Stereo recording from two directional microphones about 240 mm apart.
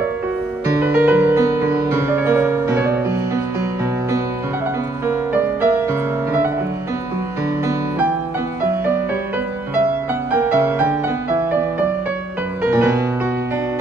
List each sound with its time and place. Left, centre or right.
0.7 s music: centre
5.0 s music: centre
10.3 s music: centre
12.6 s music: centre